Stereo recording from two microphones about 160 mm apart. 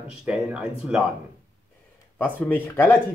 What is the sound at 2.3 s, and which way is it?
Speech, 10° left (ahead or behind).